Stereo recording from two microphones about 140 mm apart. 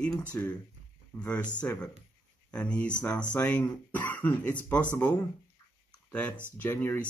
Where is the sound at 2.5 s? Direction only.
10° left (ahead or behind).